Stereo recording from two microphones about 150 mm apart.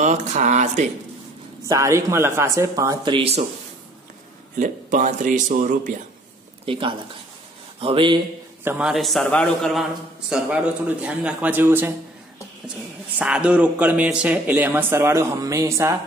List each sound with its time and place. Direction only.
0.0 s speech: 50° right (ahead or behind)
1.7 s speech: 20° right (ahead or behind)
3.2 s a man's voice: 45° right (ahead or behind)
4.6 s speech: 60° right (ahead or behind)
6.6 s speech: 35° right (ahead or behind)
8.6 s a man's voice: 5° right (ahead or behind)
13.2 s speech: 5° right (ahead or behind)